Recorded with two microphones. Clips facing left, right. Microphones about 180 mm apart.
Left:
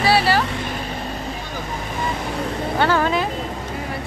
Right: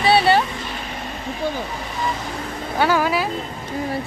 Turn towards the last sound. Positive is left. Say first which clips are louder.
# even
turn(degrees=-5)  # may be behind; listen again after turning